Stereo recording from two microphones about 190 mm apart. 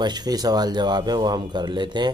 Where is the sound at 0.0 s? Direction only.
20° right (ahead or behind).